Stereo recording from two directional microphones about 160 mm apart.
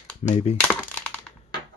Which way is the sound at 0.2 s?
45° left (ahead or behind).